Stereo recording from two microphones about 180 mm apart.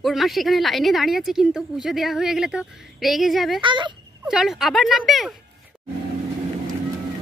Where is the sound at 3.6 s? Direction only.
25° right (ahead or behind).